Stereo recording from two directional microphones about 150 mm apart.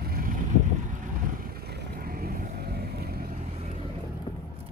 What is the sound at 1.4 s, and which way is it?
Vehicle, 85° right.